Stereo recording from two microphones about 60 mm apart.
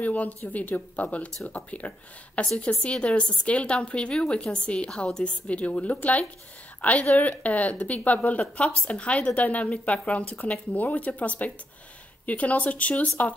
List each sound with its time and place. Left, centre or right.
0.0 s a woman's voice: left